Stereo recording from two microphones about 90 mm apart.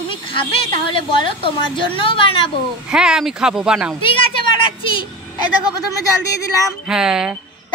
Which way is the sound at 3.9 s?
75° left (ahead or behind).